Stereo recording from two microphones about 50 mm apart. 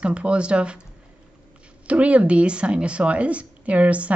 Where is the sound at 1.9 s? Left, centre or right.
Right.